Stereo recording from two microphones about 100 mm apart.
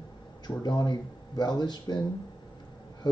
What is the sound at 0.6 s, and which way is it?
Speech, 40° left (ahead or behind).